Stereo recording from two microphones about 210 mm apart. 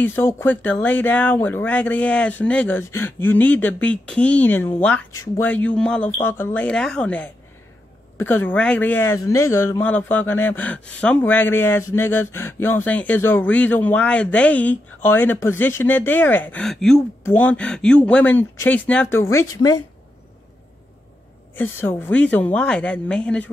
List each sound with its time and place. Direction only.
0.0 s speech: 10° left (ahead or behind)
21.5 s speech: 10° left (ahead or behind)